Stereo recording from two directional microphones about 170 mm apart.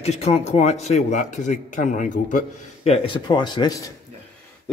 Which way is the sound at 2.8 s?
30° left (ahead or behind).